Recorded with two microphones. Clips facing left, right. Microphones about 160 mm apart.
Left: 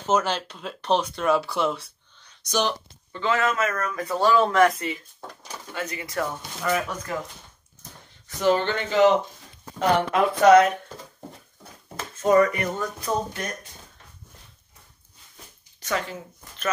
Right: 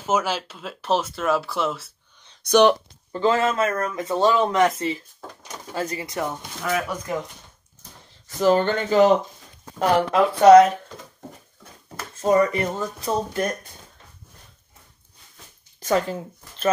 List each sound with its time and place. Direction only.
0.0 s speech: 5° right (ahead or behind)
2.4 s speech: 60° right (ahead or behind)
3.1 s speech: 35° right (ahead or behind)
6.0 s speech: 20° right (ahead or behind)
6.6 s speech: 5° right (ahead or behind)
8.4 s speech: 40° right (ahead or behind)
9.8 s speech: 35° right (ahead or behind)
12.2 s speech: 30° right (ahead or behind)
15.9 s speech: 40° right (ahead or behind)